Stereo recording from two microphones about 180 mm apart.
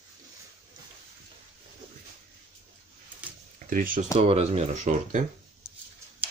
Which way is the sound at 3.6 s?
50° right (ahead or behind).